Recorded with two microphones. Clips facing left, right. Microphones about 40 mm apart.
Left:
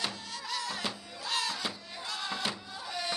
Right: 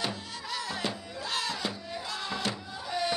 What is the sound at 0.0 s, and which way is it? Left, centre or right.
Music, centre.